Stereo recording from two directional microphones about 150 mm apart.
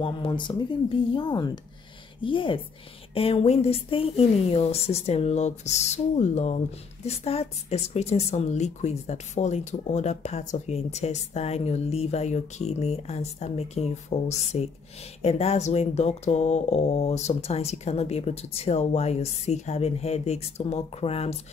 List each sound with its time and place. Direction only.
0.0 s speech: 35° left (ahead or behind)